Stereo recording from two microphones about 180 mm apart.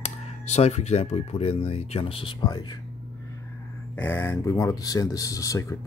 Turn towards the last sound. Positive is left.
turn(degrees=15)  # may be behind; listen again after turning